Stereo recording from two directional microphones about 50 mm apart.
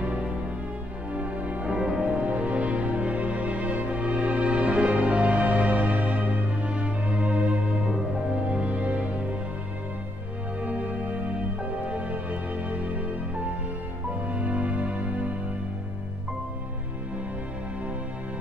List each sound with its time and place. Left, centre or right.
0.0 s music: right
10.6 s music: right
14.2 s music: right